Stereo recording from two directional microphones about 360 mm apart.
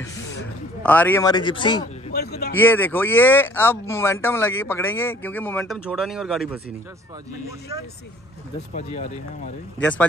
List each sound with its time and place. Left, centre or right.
0.8 s a man's voice: centre
2.1 s speech: left
2.5 s speech: centre
8.7 s speech: centre
9.8 s speech: centre